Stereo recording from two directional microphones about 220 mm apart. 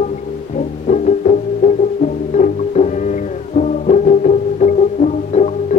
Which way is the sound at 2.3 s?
35° left (ahead or behind).